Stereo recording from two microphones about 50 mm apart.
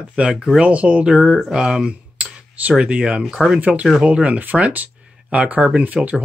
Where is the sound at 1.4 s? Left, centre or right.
Centre.